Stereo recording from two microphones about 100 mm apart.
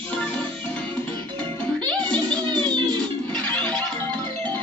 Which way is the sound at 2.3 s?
45° right (ahead or behind).